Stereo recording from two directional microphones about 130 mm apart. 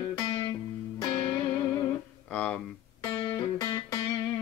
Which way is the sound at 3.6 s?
30° left (ahead or behind).